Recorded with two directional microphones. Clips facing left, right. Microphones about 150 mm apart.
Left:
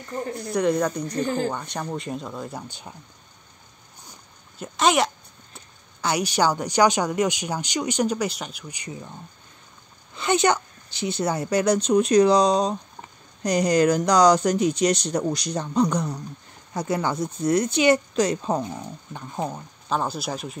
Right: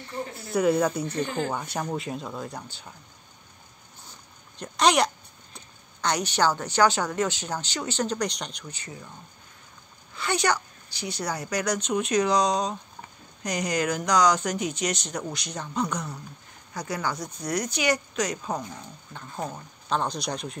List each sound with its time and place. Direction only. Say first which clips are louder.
0.4 s speech: even; 5° right (ahead or behind)
1.0 s speech: left 4 dB; 40° left (ahead or behind)
1.5 s speech: even; 5° right (ahead or behind)
4.6 s speech: left 1 dB; centre (ahead or behind)
10.1 s a woman's voice: left 5 dB; 20° left (ahead or behind)
16.7 s a woman's voice: left 6 dB; 25° left (ahead or behind)
19.1 s speech: left 4 dB; 15° left (ahead or behind)
19.9 s speech: left 2 dB; 5° left (ahead or behind)